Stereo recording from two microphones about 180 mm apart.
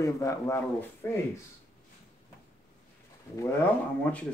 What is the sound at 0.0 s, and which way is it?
Speech, 15° left (ahead or behind).